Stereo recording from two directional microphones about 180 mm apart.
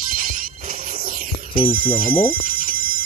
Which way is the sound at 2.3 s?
50° right (ahead or behind).